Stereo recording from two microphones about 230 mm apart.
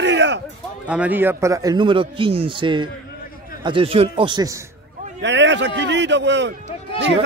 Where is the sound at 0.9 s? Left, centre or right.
Centre.